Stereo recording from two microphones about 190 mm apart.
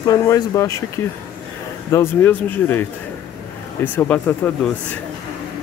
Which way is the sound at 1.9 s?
10° left (ahead or behind).